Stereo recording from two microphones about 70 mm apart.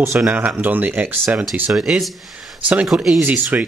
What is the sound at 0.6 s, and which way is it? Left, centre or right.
Speech, right.